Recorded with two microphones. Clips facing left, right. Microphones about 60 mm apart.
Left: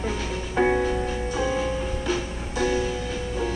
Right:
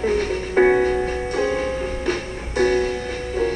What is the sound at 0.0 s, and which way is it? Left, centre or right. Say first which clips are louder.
Music: right 8 dB; right.